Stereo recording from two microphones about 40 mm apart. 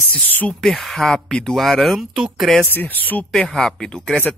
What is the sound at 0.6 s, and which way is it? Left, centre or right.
Speech, centre.